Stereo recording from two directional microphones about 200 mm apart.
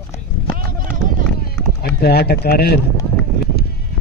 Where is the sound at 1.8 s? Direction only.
50° left (ahead or behind).